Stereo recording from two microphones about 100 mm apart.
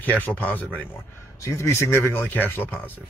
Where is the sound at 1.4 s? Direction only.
25° left (ahead or behind).